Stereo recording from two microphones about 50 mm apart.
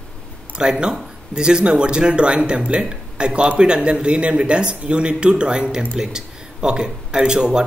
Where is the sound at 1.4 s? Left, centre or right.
Centre.